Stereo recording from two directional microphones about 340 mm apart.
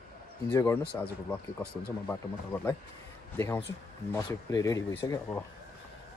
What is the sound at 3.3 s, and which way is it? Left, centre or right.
A man's voice, centre.